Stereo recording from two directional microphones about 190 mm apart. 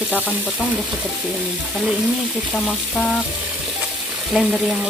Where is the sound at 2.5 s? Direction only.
5° left (ahead or behind).